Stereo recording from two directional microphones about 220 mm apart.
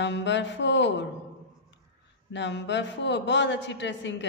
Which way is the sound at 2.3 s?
55° left (ahead or behind).